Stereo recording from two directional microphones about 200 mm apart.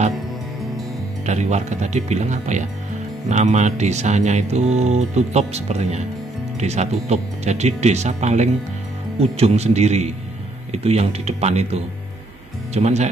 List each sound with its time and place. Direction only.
1.2 s speech: 35° right (ahead or behind)